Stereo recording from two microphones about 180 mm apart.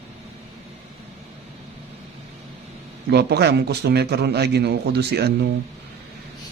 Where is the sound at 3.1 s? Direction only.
65° right (ahead or behind).